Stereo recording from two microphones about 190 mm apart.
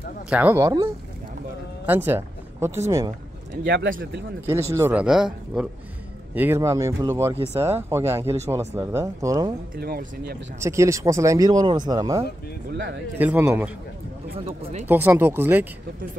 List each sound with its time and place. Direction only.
0.3 s speech: 10° right (ahead or behind)
1.9 s speech: 10° right (ahead or behind)
3.6 s speech: 55° right (ahead or behind)
4.5 s speech: 15° right (ahead or behind)
9.8 s speech: 55° right (ahead or behind)
10.6 s speech: 15° right (ahead or behind)
14.3 s speech: 35° right (ahead or behind)
14.9 s speech: 10° right (ahead or behind)